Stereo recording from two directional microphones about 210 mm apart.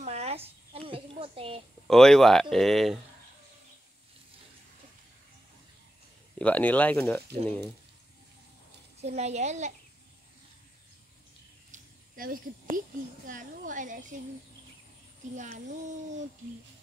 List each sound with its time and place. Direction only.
0.0 s a sound: 30° right (ahead or behind)
1.9 s speech: centre (ahead or behind)
6.3 s speech: 5° left (ahead or behind)
9.0 s a woman's voice: 30° right (ahead or behind)
11.7 s a sound: 40° right (ahead or behind)
13.3 s a woman's voice: 40° right (ahead or behind)
15.3 s a woman's voice: 35° right (ahead or behind)